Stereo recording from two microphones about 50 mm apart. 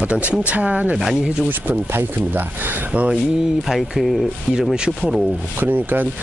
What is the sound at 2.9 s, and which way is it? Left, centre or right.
Speech, right.